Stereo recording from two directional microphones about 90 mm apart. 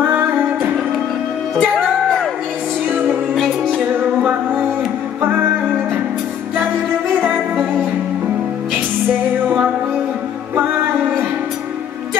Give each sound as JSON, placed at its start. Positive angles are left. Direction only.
{"t": 0.0, "sound": "music", "side_deg": -20}
{"t": 1.6, "sound": "music", "side_deg": 5}
{"t": 4.2, "sound": "music", "side_deg": -15}